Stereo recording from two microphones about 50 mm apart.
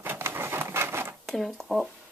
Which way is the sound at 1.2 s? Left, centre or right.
Centre.